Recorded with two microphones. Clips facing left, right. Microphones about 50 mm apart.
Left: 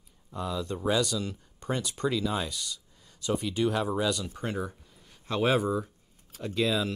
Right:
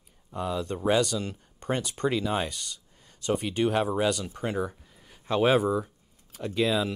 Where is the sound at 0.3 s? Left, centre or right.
Right.